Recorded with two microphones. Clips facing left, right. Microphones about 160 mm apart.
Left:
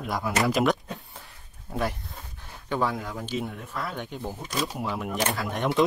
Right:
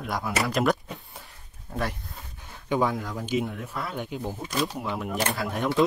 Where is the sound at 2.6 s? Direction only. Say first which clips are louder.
Right 2 dB; 15° right (ahead or behind).